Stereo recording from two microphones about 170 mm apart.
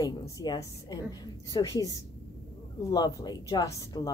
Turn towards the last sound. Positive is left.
turn(degrees=20)  # may be behind; listen again after turning